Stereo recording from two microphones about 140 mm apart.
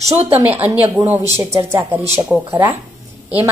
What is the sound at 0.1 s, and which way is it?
Speech, 45° right (ahead or behind).